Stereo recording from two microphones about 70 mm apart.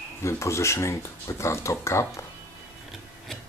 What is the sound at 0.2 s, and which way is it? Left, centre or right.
Speech, left.